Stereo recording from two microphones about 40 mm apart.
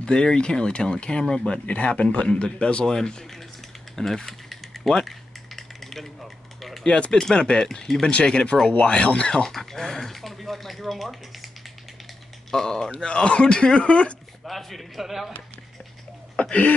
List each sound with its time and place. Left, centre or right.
0.0 s speech: left
1.7 s speech: left; by 4.2 s centre
4.3 s mechanisms: centre
5.6 s a sound: centre
7.1 s speech: centre
8.1 s speech: left
9.4 s speech: centre
12.4 s speech: centre
12.9 s speech: left
14.4 s speech: centre
16.3 s a sound: left